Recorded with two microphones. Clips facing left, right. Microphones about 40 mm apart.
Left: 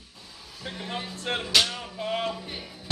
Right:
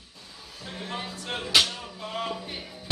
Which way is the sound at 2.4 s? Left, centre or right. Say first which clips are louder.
Even; centre.